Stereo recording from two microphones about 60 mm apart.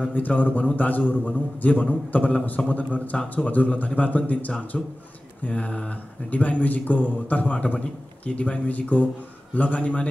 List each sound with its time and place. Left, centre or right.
0.1 s a man's voice: left